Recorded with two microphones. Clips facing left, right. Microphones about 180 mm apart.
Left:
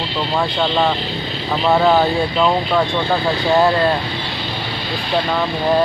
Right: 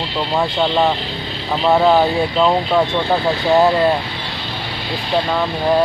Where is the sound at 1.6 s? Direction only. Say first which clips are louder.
Right 1 dB; centre (ahead or behind).